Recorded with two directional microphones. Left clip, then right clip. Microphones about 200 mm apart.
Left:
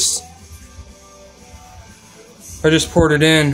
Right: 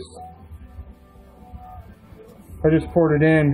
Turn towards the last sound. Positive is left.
turn(degrees=15)  # may be behind; listen again after turning